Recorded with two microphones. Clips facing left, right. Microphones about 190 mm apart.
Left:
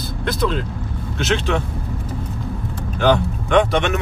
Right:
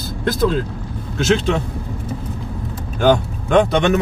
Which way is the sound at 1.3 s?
35° right (ahead or behind).